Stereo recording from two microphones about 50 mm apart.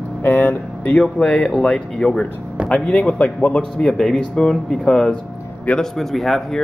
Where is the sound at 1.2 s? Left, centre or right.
Left.